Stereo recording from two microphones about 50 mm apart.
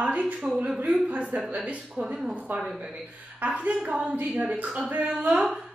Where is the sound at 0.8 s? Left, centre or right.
Right.